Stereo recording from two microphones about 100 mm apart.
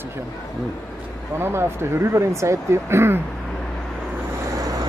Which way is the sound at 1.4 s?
25° right (ahead or behind).